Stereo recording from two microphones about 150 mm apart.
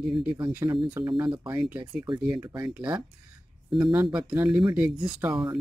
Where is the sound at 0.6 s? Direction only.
20° right (ahead or behind).